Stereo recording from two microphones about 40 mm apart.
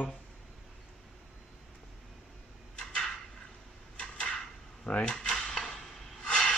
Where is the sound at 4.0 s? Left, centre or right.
Left.